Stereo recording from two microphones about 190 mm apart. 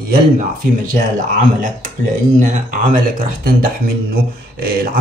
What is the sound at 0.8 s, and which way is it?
Speech, 45° right (ahead or behind).